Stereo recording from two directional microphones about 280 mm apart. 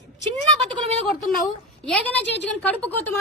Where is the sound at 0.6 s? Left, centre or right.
Right.